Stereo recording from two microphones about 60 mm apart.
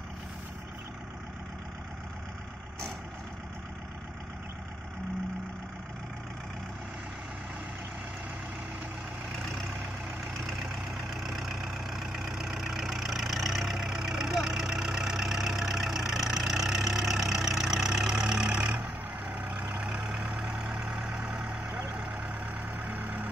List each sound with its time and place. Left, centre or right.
9.4 s vehicle: centre
22.5 s vehicle: right